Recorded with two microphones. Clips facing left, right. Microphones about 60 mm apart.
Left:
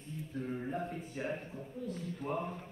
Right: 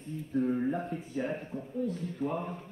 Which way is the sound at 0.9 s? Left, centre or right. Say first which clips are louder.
Right 7 dB; left.